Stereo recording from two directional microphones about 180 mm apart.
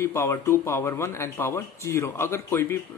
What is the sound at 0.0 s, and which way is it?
Speech, 15° left (ahead or behind).